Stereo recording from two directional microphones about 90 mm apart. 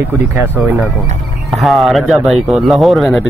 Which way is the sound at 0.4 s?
20° right (ahead or behind).